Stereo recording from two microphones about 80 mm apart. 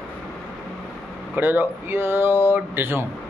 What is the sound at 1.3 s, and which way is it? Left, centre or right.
Speech, right.